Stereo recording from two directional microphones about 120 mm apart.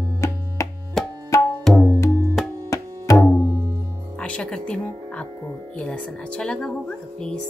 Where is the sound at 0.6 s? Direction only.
25° left (ahead or behind).